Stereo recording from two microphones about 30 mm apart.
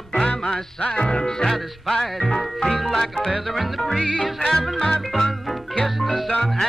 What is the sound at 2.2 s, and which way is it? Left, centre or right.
Speech, centre.